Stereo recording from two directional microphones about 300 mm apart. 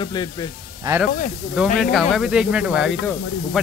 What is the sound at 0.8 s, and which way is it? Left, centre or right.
Speech, centre.